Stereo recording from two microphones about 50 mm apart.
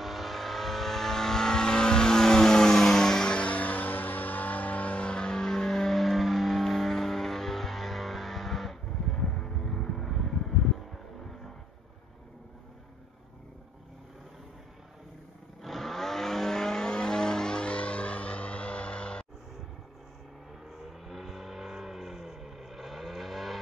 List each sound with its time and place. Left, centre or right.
0.0 s vehicle: centre
15.6 s vehicle: centre; by 19.2 s left
20.8 s vehicle: centre